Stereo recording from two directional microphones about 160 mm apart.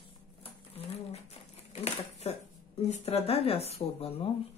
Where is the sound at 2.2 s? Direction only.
40° left (ahead or behind).